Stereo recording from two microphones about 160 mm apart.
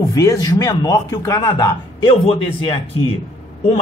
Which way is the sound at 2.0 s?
35° left (ahead or behind).